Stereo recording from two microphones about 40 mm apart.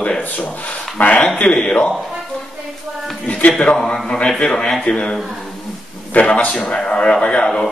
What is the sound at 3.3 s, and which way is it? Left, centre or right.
Speech, left.